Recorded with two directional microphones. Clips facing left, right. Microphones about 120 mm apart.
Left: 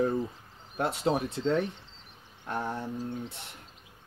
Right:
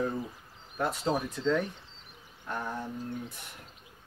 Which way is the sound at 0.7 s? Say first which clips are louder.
Left 2 dB; 25° left (ahead or behind).